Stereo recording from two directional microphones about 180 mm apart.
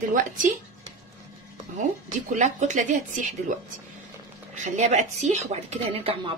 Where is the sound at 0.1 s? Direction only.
45° right (ahead or behind).